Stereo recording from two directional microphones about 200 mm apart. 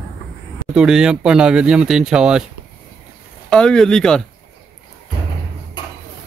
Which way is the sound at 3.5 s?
5° left (ahead or behind).